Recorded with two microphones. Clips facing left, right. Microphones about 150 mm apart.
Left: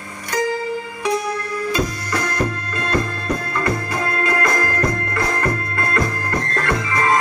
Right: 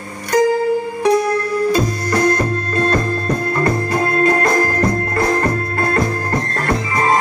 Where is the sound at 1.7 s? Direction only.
35° right (ahead or behind).